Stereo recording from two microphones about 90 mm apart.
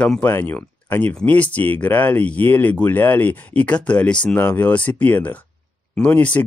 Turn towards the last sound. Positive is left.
turn(degrees=15)  # may be behind; listen again after turning